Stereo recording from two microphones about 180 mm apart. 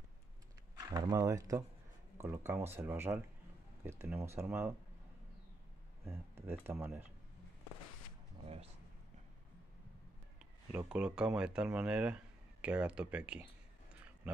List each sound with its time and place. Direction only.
0.7 s speech: 20° right (ahead or behind)
6.0 s speech: 15° right (ahead or behind)
10.4 s speech: 5° right (ahead or behind)